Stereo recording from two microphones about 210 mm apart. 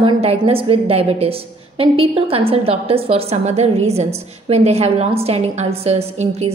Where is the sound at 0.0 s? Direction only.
30° right (ahead or behind).